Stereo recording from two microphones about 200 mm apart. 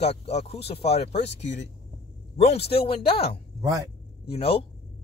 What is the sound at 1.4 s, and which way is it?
Speech, 60° left (ahead or behind).